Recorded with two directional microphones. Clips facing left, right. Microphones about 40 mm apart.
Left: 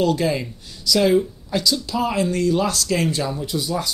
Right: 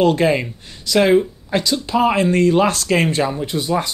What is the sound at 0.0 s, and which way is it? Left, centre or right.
Speech, right.